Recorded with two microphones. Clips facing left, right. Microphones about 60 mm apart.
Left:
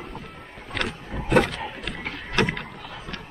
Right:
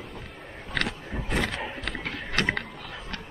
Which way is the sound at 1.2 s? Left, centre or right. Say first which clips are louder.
Left 9 dB; left.